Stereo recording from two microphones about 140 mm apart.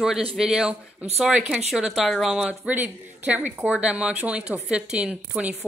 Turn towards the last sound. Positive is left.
turn(degrees=-5)  # may be behind; listen again after turning